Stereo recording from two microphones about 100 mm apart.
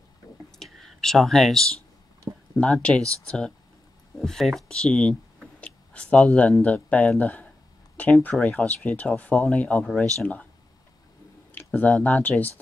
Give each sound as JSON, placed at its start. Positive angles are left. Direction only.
{"t": 0.6, "sound": "speech", "side_deg": 0}
{"t": 5.6, "sound": "a sound", "side_deg": 10}
{"t": 6.6, "sound": "speech", "side_deg": 15}
{"t": 9.4, "sound": "speech", "side_deg": 5}
{"t": 11.5, "sound": "a sound", "side_deg": 15}
{"t": 12.0, "sound": "speech", "side_deg": 15}